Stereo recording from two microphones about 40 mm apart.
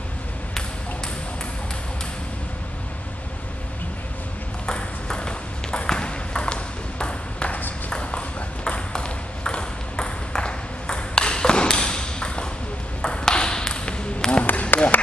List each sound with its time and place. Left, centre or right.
4.6 s ping: left
7.4 s ping: left
7.9 s ping: left
14.7 s a sound: left